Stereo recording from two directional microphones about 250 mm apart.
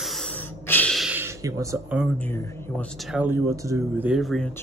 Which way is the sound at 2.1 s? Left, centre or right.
Centre.